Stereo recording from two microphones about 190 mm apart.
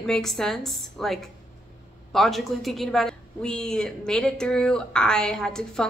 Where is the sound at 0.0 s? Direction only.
Centre (ahead or behind).